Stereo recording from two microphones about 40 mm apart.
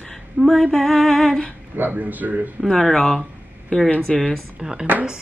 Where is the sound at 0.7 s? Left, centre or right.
Centre.